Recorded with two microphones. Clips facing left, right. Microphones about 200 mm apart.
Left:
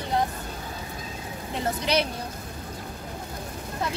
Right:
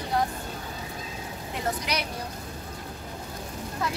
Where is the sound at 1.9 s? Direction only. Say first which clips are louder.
Left 11 dB; 25° left (ahead or behind).